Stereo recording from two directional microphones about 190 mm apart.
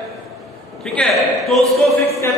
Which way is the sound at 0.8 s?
5° left (ahead or behind).